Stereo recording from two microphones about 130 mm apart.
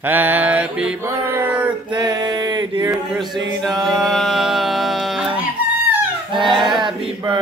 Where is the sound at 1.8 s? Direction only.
35° right (ahead or behind).